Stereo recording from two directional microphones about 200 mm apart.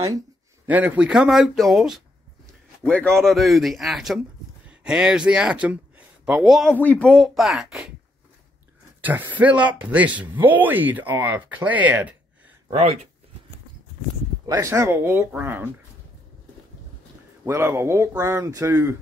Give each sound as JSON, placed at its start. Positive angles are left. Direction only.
{"t": 0.7, "sound": "speech", "side_deg": -10}
{"t": 9.0, "sound": "speech", "side_deg": -10}
{"t": 12.6, "sound": "speech", "side_deg": -30}
{"t": 14.4, "sound": "speech", "side_deg": -15}
{"t": 17.5, "sound": "speech", "side_deg": -15}